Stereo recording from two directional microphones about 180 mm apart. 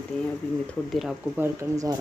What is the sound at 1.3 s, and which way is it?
Speech, 20° right (ahead or behind).